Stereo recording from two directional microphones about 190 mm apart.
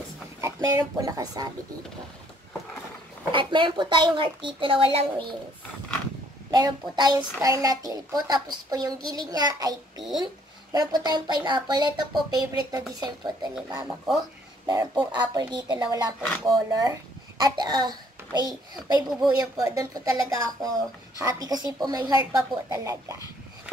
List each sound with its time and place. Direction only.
0.4 s a sound: 15° right (ahead or behind)
0.9 s a child's voice: 20° right (ahead or behind)
3.3 s a child's voice: 25° right (ahead or behind)
6.5 s a child's voice: 20° right (ahead or behind)